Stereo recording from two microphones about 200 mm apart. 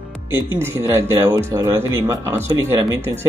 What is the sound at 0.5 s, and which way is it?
Speech, 15° right (ahead or behind).